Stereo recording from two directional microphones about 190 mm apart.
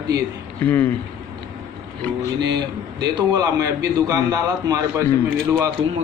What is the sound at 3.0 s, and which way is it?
A man's voice, 20° right (ahead or behind).